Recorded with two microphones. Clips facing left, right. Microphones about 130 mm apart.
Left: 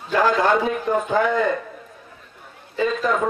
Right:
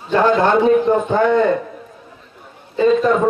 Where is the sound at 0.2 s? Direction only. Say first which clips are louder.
Right 4 dB; centre (ahead or behind).